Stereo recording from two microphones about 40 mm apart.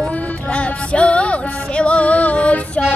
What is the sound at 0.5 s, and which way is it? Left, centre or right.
Music, left.